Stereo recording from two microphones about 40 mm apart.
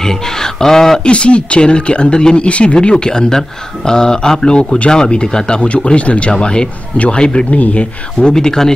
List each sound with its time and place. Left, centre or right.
0.0 s a sound: centre
1.0 s speech: left
7.5 s speech: left; by 8.7 s centre